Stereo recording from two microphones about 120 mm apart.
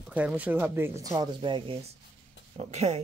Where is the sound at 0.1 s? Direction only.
10° right (ahead or behind).